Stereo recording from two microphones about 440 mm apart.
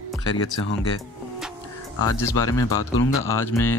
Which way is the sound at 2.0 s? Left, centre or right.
Centre.